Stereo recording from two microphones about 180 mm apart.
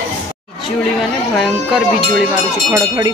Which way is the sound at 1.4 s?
Centre (ahead or behind).